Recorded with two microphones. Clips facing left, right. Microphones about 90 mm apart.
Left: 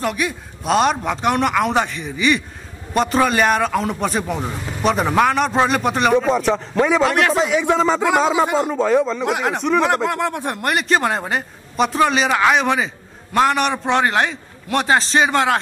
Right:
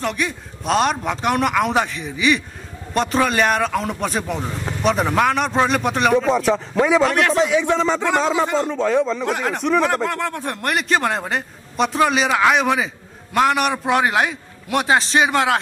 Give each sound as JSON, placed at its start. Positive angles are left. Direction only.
{"t": 0.0, "sound": "speech", "side_deg": 5}